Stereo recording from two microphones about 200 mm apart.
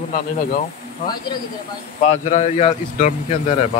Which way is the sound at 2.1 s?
35° left (ahead or behind).